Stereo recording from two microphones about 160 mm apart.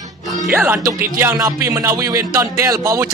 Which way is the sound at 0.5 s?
15° right (ahead or behind).